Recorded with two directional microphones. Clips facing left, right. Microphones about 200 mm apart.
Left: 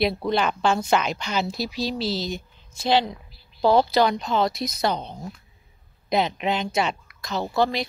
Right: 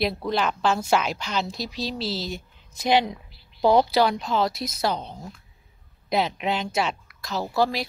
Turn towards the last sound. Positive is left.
turn(degrees=-5)  # may be behind; listen again after turning